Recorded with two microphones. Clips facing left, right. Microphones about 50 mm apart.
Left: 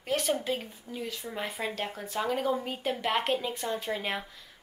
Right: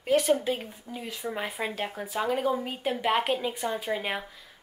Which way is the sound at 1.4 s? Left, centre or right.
Centre.